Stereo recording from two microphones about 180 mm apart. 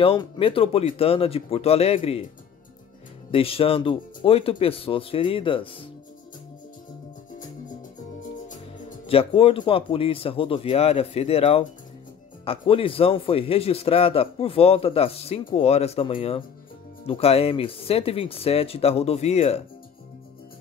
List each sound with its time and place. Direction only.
0.0 s a man's voice: 30° left (ahead or behind)
3.3 s a man's voice: 30° left (ahead or behind)
9.0 s a man's voice: 30° left (ahead or behind)